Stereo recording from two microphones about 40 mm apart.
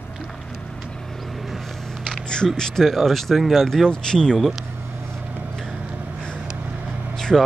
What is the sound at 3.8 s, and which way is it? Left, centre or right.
Speech, centre.